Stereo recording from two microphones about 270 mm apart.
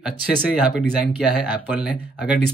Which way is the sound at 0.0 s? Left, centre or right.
Centre.